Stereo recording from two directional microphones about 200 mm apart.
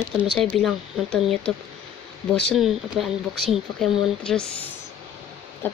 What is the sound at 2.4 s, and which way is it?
Speech, centre (ahead or behind).